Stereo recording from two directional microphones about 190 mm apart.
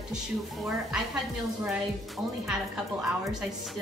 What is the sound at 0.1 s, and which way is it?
A woman's voice, centre (ahead or behind).